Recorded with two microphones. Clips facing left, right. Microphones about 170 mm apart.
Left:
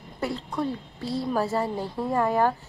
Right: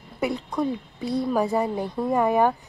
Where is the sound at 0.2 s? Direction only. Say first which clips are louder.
Right 3 dB; 15° right (ahead or behind).